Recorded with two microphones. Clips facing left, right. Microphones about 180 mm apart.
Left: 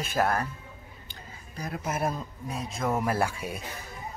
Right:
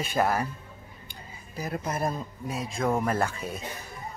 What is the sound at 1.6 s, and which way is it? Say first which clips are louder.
Speech: right 1 dB; centre (ahead or behind).